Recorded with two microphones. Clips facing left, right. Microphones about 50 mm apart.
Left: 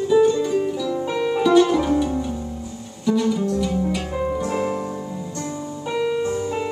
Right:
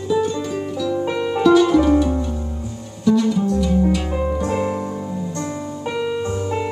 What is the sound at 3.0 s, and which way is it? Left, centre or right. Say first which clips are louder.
Music: right 3 dB; centre.